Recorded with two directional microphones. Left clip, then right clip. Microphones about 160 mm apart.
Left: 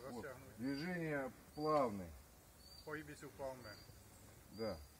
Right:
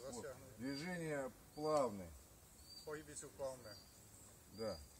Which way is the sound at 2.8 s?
40° right (ahead or behind).